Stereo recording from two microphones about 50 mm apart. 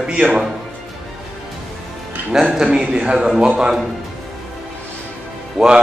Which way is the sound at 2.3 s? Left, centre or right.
Centre.